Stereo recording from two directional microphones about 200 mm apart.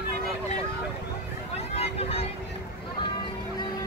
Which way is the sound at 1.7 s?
30° left (ahead or behind).